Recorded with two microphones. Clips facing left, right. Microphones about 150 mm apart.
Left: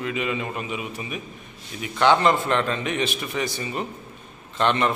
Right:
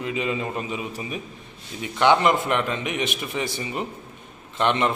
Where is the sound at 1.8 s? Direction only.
15° right (ahead or behind).